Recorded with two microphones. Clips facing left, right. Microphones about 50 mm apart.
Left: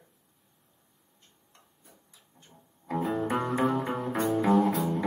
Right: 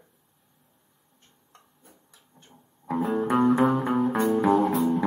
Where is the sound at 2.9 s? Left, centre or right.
Right.